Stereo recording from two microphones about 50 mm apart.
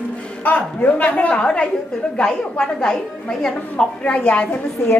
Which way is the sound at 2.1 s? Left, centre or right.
Centre.